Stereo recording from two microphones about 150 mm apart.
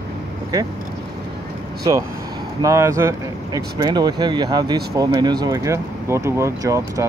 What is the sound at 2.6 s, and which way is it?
Speech, 20° right (ahead or behind).